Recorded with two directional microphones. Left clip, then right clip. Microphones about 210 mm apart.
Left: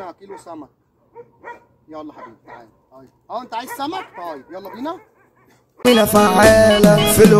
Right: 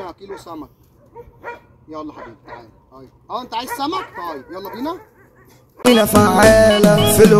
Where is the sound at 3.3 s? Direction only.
10° left (ahead or behind).